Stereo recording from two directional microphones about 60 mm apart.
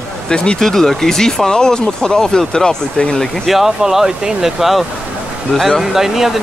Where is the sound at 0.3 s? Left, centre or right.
Centre.